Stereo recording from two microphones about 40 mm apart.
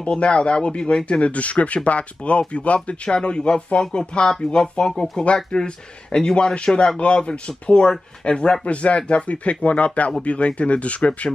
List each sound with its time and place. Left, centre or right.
0.0 s speech: left
3.1 s speech: left
11.0 s speech: centre